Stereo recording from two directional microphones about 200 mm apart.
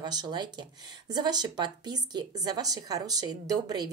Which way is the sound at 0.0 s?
20° right (ahead or behind).